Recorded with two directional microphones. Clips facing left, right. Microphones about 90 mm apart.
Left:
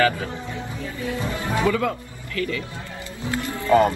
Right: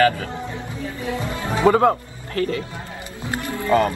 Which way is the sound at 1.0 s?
25° right (ahead or behind).